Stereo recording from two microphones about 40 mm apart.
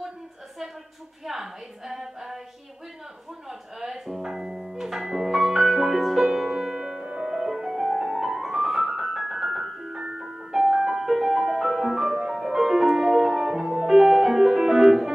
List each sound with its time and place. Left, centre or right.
1.2 s a woman's voice: centre
3.4 s a woman's voice: centre
4.7 s music: centre
6.5 s music: centre